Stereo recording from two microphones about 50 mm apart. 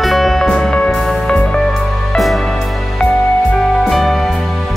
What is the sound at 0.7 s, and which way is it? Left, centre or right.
Music, centre.